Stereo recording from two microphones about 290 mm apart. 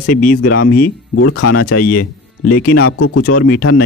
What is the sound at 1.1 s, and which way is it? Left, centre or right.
Speech, left.